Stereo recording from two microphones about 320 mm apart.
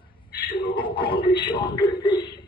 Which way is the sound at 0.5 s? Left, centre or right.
Centre.